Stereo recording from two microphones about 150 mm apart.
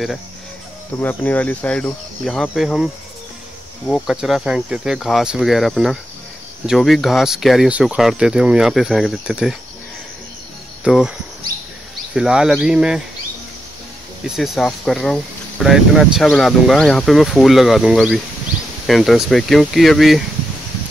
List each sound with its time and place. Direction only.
0.9 s speech: 10° left (ahead or behind); by 9.6 s 5° right (ahead or behind)
10.8 s cricket: 5° right (ahead or behind)
12.1 s speech: 5° right (ahead or behind)
14.2 s speech: centre (ahead or behind)